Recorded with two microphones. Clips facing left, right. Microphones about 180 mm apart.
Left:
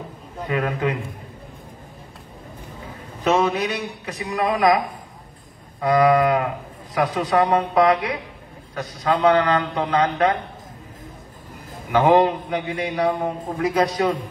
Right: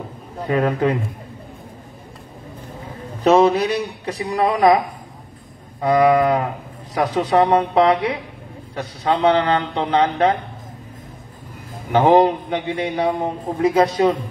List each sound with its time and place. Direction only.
0.5 s a man's voice: 35° right (ahead or behind)
3.3 s a man's voice: 35° right (ahead or behind)
5.8 s a man's voice: 25° right (ahead or behind)
11.9 s a man's voice: 25° right (ahead or behind)